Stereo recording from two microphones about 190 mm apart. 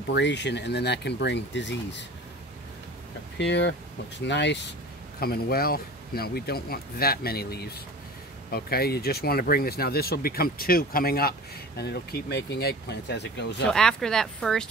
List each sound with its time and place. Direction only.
0.1 s speech: 65° left (ahead or behind)
3.3 s speech: 65° left (ahead or behind)
5.2 s speech: 55° left (ahead or behind)
13.7 s speech: 5° left (ahead or behind)